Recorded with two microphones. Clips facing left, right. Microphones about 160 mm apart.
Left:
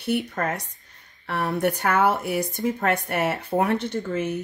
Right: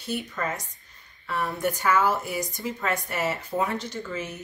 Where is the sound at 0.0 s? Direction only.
60° left (ahead or behind).